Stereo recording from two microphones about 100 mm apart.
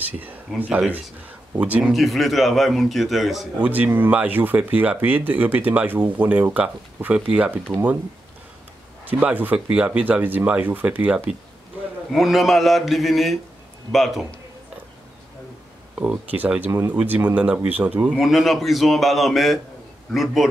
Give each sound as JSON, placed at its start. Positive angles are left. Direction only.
{"t": 0.0, "sound": "speech", "side_deg": -20}
{"t": 3.5, "sound": "speech", "side_deg": -15}
{"t": 9.0, "sound": "speech", "side_deg": -15}
{"t": 12.1, "sound": "speech", "side_deg": 0}
{"t": 16.0, "sound": "speech", "side_deg": -15}
{"t": 18.2, "sound": "speech", "side_deg": 0}